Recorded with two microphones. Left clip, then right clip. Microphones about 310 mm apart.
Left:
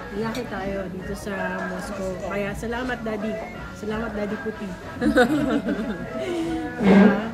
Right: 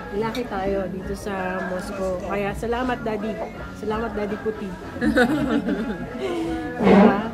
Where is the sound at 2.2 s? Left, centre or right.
Centre.